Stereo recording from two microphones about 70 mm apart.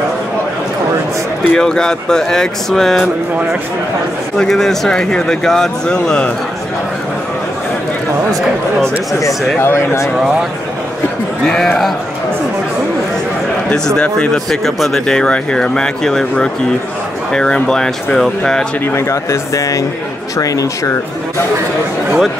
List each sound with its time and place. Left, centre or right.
1.5 s speech: centre
4.4 s speech: centre
9.2 s speech: left
11.4 s speech: centre
13.7 s speech: centre
18.9 s speech: left